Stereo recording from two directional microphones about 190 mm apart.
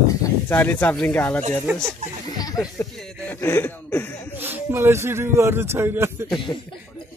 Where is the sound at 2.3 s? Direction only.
20° left (ahead or behind).